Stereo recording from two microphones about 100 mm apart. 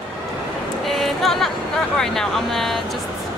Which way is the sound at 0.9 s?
Centre (ahead or behind).